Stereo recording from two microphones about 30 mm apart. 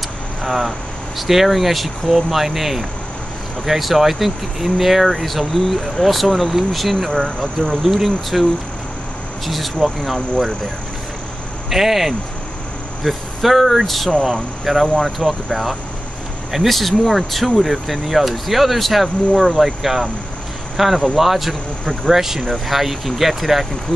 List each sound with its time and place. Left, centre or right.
0.4 s speech: centre
7.2 s speech: centre
7.8 s speech: centre
9.5 s speech: centre
11.7 s speech: centre